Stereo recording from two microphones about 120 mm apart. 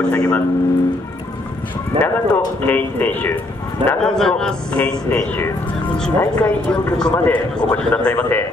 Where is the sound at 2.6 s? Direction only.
15° left (ahead or behind).